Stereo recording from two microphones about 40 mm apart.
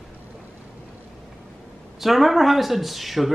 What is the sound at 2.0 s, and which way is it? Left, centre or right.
Speech, centre.